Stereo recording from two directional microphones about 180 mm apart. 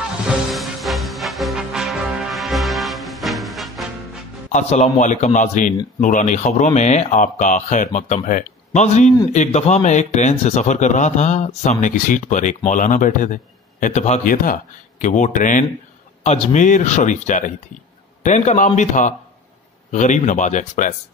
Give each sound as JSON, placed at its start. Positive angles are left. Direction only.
{"t": 0.5, "sound": "music", "side_deg": 0}
{"t": 4.5, "sound": "speech", "side_deg": 40}